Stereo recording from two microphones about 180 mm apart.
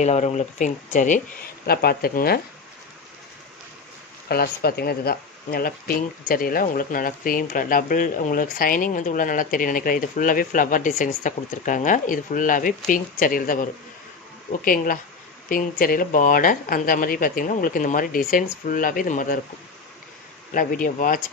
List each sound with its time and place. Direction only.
0.0 s speech: 40° left (ahead or behind)
1.7 s speech: 60° left (ahead or behind)
4.3 s speech: 60° left (ahead or behind)
20.5 s speech: 50° left (ahead or behind)